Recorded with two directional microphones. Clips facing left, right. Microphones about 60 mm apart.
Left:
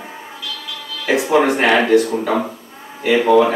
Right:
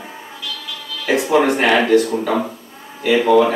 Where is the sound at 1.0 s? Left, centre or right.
Left.